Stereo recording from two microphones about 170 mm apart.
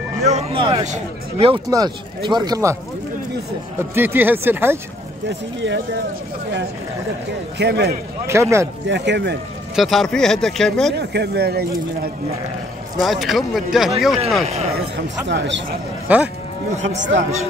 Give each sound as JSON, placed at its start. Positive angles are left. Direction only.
{"t": 0.2, "sound": "speech", "side_deg": -40}
{"t": 0.8, "sound": "speech", "side_deg": -45}
{"t": 1.5, "sound": "speech", "side_deg": -25}
{"t": 3.9, "sound": "speech", "side_deg": -10}
{"t": 7.5, "sound": "speech", "side_deg": -75}
{"t": 8.3, "sound": "speech", "side_deg": -15}
{"t": 8.8, "sound": "speech", "side_deg": -90}
{"t": 9.8, "sound": "speech", "side_deg": 0}
{"t": 11.0, "sound": "speech", "side_deg": -75}
{"t": 13.0, "sound": "speech", "side_deg": 0}
{"t": 15.2, "sound": "speech", "side_deg": -90}
{"t": 16.1, "sound": "speech", "side_deg": -10}
{"t": 16.8, "sound": "speech", "side_deg": -90}